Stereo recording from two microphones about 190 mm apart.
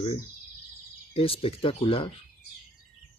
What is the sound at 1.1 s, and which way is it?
Speech, 30° left (ahead or behind).